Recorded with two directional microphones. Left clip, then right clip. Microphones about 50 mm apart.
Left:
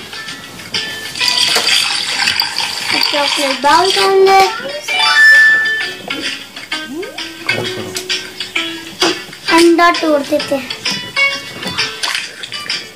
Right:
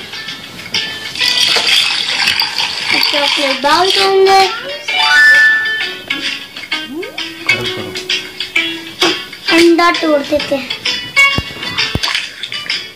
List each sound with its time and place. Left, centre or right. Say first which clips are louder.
0.7 s water: right 2 dB; left
3.6 s speech: left 1 dB; left
4.1 s speech: left 1 dB; left
4.8 s music: even; left
9.9 s speech: right 1 dB; left
10.8 s music: right 6 dB; left